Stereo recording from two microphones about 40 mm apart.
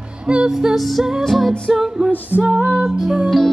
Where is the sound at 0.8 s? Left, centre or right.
Centre.